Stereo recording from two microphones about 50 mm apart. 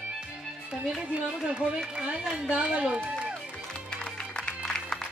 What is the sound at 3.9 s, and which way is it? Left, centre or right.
Music, centre.